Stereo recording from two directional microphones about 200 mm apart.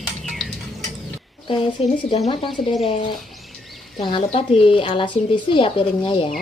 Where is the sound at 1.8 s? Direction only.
30° left (ahead or behind).